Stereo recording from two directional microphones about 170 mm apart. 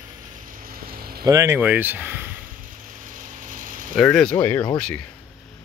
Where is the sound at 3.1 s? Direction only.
50° right (ahead or behind).